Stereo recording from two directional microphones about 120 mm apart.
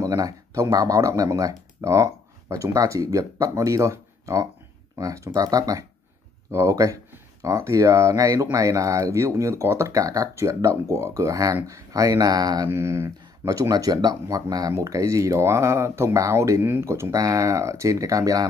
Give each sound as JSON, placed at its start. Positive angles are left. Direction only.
{"t": 0.0, "sound": "speech", "side_deg": -30}
{"t": 12.6, "sound": "speech", "side_deg": -20}
{"t": 13.7, "sound": "speech", "side_deg": -30}